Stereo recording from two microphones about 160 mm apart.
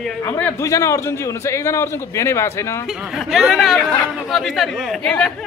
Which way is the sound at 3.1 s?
Centre (ahead or behind).